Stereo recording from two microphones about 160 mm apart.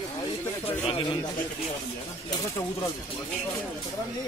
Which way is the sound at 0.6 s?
30° left (ahead or behind).